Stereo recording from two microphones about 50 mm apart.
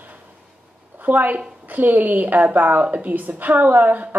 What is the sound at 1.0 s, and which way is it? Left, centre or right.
Speech, right.